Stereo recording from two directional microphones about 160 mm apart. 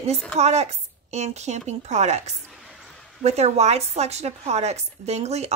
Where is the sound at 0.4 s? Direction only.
45° right (ahead or behind).